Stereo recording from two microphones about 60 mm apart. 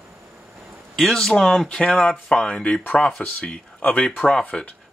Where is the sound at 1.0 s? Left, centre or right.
Centre.